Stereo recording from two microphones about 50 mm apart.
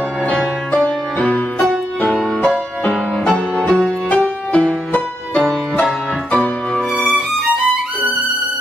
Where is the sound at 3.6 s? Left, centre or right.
Centre.